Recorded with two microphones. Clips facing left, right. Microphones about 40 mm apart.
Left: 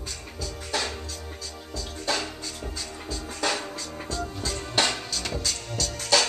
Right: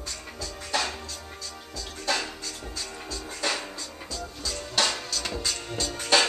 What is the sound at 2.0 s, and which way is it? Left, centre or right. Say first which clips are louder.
Music: even; centre.